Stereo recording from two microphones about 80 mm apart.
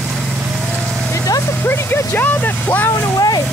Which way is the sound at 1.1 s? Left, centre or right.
Left.